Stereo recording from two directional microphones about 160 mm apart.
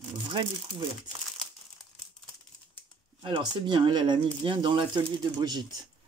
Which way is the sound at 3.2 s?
30° right (ahead or behind).